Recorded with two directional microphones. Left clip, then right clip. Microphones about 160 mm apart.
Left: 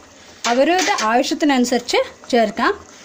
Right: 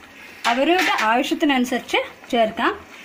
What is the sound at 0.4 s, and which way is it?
Speech, 50° left (ahead or behind).